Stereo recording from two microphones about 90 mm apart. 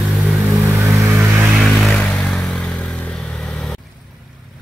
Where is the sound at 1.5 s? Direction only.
5° right (ahead or behind).